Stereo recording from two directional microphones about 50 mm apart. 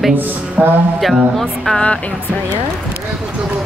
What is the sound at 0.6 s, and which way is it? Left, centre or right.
Speech, right.